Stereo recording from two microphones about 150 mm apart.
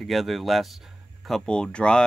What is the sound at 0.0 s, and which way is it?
Speech, centre (ahead or behind).